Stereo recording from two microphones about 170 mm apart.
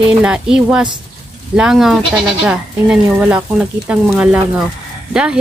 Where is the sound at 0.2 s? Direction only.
5° right (ahead or behind).